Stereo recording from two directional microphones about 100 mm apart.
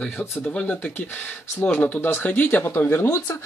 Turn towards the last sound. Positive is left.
turn(degrees=25)  # may be behind; listen again after turning